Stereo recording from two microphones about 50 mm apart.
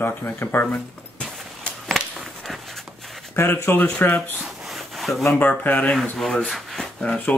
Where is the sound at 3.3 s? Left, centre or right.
Left.